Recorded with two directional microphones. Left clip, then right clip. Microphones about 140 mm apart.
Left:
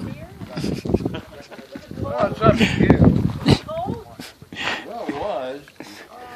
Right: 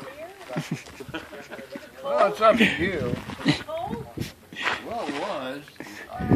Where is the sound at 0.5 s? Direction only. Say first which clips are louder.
Left 6 dB; 15° left (ahead or behind).